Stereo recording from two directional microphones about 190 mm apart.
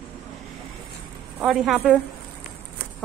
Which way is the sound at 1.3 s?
Centre (ahead or behind).